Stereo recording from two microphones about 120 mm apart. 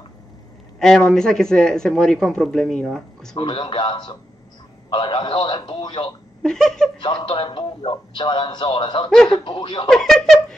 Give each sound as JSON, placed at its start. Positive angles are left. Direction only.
{"t": 0.7, "sound": "speech", "side_deg": 5}
{"t": 3.3, "sound": "a man's voice", "side_deg": 45}
{"t": 6.4, "sound": "speech", "side_deg": 5}
{"t": 7.0, "sound": "a man's voice", "side_deg": 40}
{"t": 9.8, "sound": "speech", "side_deg": 5}